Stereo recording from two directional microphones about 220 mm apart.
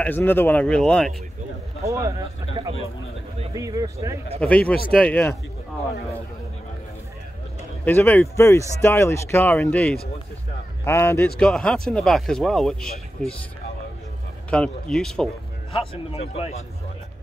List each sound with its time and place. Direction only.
0.0 s speech: 10° left (ahead or behind)
1.9 s speech: 15° right (ahead or behind)
3.5 s speech: 15° right (ahead or behind)
4.4 s speech: 5° left (ahead or behind)
7.8 s speech: 10° left (ahead or behind)
14.5 s speech: 5° left (ahead or behind)
15.7 s a man's voice: 25° left (ahead or behind)